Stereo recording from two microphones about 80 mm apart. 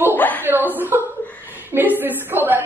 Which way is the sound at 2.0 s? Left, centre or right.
Right.